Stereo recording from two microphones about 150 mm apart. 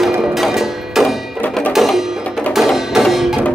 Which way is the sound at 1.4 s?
10° left (ahead or behind).